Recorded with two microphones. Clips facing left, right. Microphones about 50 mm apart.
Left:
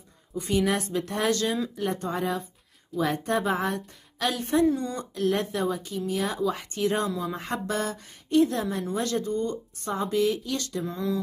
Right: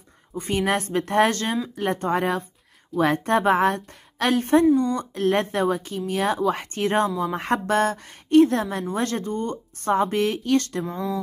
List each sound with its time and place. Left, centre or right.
0.4 s speech: right